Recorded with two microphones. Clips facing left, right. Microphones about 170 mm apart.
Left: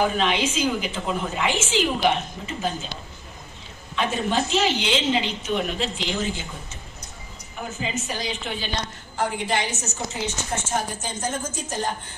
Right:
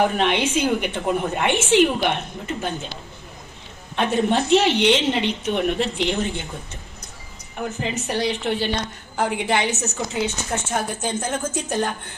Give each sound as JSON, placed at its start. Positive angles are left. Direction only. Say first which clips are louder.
{"t": 0.0, "sound": "a woman's voice", "louder": "right 2 dB", "side_deg": -65}
{"t": 3.9, "sound": "a woman's voice", "louder": "right 4 dB", "side_deg": -65}
{"t": 7.8, "sound": "a woman's voice", "louder": "right 5 dB", "side_deg": -65}